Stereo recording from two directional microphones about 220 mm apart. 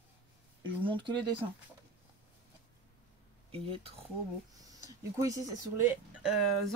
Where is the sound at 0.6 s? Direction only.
20° right (ahead or behind).